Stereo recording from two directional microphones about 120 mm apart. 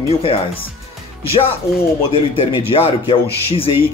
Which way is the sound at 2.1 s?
50° left (ahead or behind).